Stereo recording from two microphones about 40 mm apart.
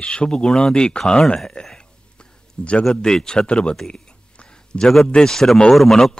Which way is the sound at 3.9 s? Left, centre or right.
Left.